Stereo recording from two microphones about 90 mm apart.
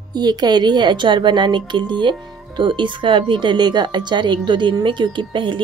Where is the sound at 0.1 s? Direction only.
50° right (ahead or behind).